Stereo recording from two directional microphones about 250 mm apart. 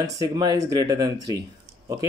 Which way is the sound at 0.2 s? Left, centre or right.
Centre.